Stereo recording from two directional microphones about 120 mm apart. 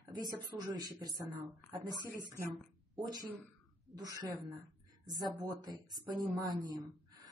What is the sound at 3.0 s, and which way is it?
A woman's voice, 35° right (ahead or behind).